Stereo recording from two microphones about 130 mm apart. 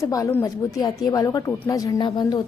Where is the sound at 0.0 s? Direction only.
25° left (ahead or behind).